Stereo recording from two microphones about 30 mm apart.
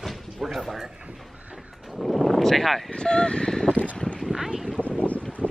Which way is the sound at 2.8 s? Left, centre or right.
Left.